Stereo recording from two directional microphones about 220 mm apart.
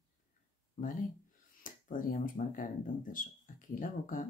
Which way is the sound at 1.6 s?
35° left (ahead or behind).